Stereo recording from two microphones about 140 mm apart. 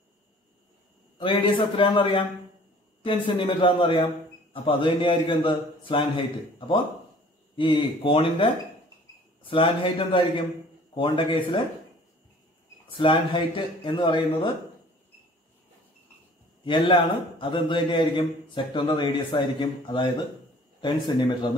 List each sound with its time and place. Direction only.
1.2 s a man's voice: 35° left (ahead or behind)
7.5 s a man's voice: 35° left (ahead or behind)
12.9 s a man's voice: 40° left (ahead or behind)
16.6 s a man's voice: 35° left (ahead or behind)